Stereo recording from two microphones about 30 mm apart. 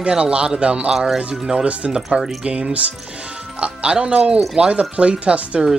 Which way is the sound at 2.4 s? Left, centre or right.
Right.